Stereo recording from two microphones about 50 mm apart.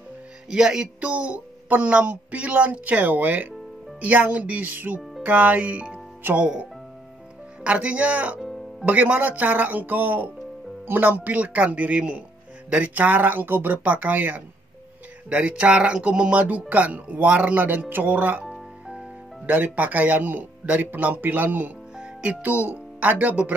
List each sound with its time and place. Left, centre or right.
0.5 s music: centre
1.0 s speech: right
7.6 s speech: right
15.2 s speech: right
18.4 s music: centre
19.4 s speech: right
21.9 s music: centre
22.3 s speech: right